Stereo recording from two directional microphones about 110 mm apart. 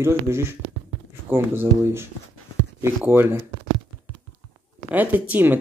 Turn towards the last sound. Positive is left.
turn(degrees=-15)  # may be behind; listen again after turning